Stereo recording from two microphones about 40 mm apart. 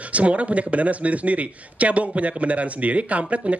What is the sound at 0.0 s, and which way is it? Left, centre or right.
A man's voice, right.